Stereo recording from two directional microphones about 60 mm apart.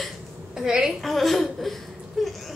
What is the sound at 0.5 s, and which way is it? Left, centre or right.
Speech, centre.